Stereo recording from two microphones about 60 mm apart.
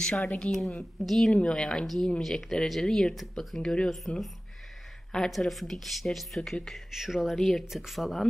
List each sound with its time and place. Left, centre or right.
0.0 s speech: centre
0.5 s speech: centre
5.1 s speech: centre
6.9 s speech: centre